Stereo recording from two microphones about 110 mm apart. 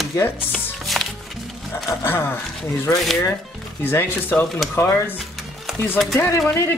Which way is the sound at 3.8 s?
20° left (ahead or behind).